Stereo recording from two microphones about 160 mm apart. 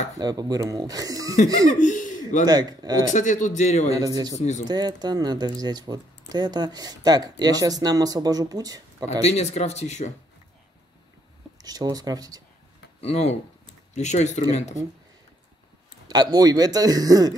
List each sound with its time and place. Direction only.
0.2 s speech: 25° right (ahead or behind)
1.8 s a sound: 55° left (ahead or behind)
2.4 s speech: 25° right (ahead or behind)
3.1 s speech: 50° left (ahead or behind)
4.0 s speech: 25° right (ahead or behind)
4.4 s speech: 45° left (ahead or behind)
4.6 s speech: 25° right (ahead or behind)
9.2 s speech: 45° left (ahead or behind)
11.6 s speech: 25° right (ahead or behind)
13.0 s speech: 45° left (ahead or behind)
16.1 s speech: 25° right (ahead or behind)